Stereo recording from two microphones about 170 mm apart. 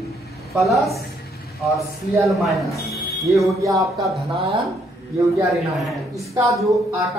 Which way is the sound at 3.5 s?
20° right (ahead or behind).